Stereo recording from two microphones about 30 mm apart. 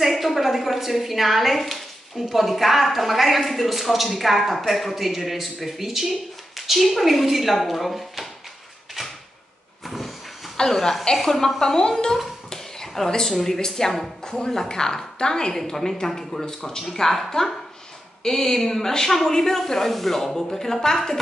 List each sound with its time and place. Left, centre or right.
0.0 s a woman's voice: centre
9.8 s vehicle: centre
10.6 s speech: centre
11.6 s a woman's voice: left
12.4 s cough: centre
13.3 s a woman's voice: centre
16.9 s speech: centre